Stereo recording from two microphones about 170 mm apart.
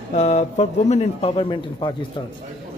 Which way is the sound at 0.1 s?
40° left (ahead or behind).